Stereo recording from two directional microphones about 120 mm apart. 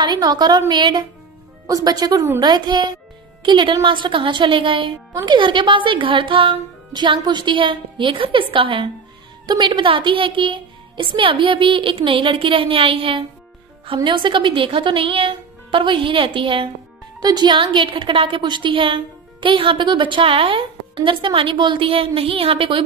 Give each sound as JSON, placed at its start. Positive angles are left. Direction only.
{"t": 0.0, "sound": "a woman's voice", "side_deg": -35}
{"t": 17.2, "sound": "a woman's voice", "side_deg": -35}